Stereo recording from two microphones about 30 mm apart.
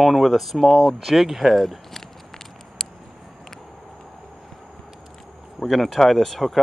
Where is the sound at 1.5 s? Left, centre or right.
Centre.